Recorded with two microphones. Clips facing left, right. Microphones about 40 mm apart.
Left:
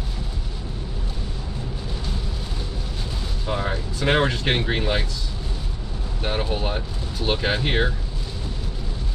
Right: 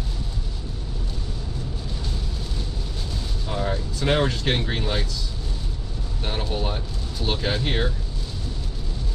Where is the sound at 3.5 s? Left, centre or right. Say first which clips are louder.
Left 1 dB; left.